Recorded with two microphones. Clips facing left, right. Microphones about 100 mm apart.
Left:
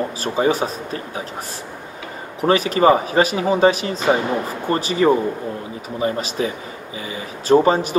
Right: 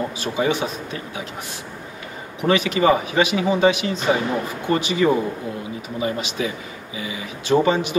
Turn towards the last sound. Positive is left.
turn(degrees=40)  # may be behind; listen again after turning